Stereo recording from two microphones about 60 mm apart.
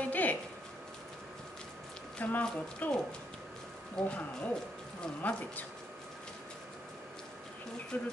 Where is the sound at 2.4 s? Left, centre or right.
Left.